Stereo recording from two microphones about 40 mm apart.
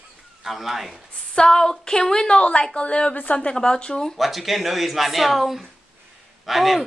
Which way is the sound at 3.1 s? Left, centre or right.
Left.